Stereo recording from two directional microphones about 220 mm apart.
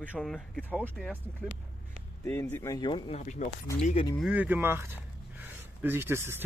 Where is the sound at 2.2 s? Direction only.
10° left (ahead or behind); by 4.1 s 25° left (ahead or behind).